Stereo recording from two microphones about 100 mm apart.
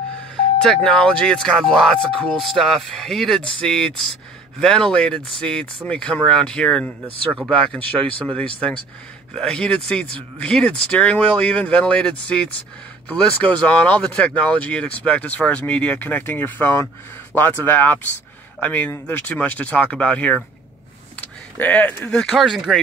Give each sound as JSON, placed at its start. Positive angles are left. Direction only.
{"t": 0.6, "sound": "speech", "side_deg": 5}